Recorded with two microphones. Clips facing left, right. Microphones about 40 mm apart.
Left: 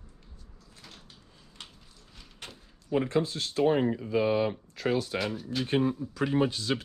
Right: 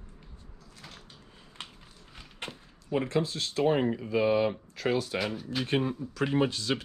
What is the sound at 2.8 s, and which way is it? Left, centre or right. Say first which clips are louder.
Speech: left 1 dB; right.